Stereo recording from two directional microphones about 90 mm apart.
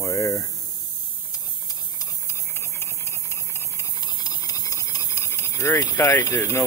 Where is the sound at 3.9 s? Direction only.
50° left (ahead or behind).